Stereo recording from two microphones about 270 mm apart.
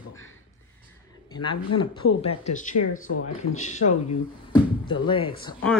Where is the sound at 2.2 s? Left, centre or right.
Left.